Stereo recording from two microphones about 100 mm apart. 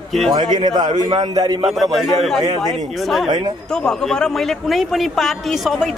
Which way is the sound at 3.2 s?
50° right (ahead or behind).